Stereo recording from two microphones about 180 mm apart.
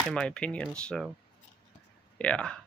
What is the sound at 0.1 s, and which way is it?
Speech, 5° left (ahead or behind).